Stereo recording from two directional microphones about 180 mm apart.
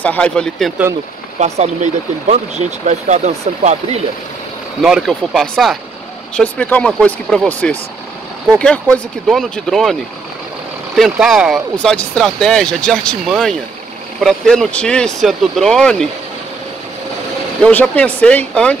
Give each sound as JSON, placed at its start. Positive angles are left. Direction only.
{"t": 0.0, "sound": "speech", "side_deg": 5}
{"t": 1.4, "sound": "speech", "side_deg": -40}
{"t": 4.8, "sound": "speech", "side_deg": 0}
{"t": 11.0, "sound": "speech", "side_deg": 0}
{"t": 17.6, "sound": "speech", "side_deg": 10}